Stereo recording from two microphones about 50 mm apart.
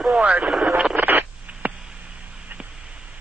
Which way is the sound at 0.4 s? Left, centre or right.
Right.